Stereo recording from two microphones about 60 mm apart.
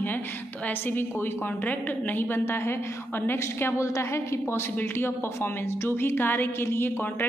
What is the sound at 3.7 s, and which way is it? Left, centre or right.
Speech, left.